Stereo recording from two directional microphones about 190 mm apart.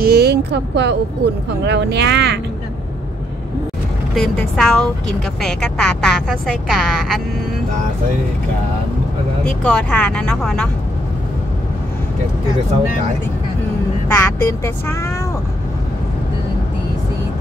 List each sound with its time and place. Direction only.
0.0 s a sound: 60° right (ahead or behind)
1.7 s speech: 65° right (ahead or behind)
4.1 s a woman's voice: centre (ahead or behind)
9.5 s a woman's voice: 5° left (ahead or behind)
14.0 s speech: 15° left (ahead or behind)